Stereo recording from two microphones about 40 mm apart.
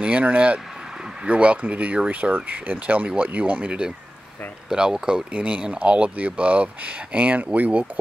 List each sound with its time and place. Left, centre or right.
0.0 s speech: right
4.7 s speech: right